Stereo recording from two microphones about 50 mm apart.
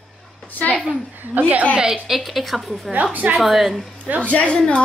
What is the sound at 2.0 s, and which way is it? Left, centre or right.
A woman's voice, centre.